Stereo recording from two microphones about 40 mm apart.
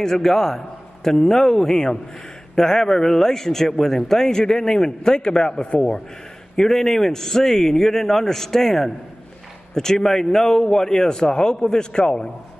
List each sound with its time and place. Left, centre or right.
0.0 s a man's voice: centre